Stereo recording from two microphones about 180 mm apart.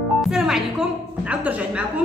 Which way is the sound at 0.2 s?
Centre (ahead or behind).